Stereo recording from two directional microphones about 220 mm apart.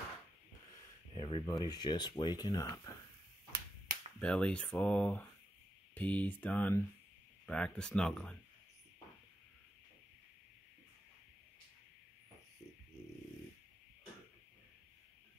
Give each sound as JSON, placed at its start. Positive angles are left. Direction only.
{"t": 1.1, "sound": "speech", "side_deg": 20}
{"t": 3.5, "sound": "whip", "side_deg": -40}
{"t": 4.2, "sound": "speech", "side_deg": 5}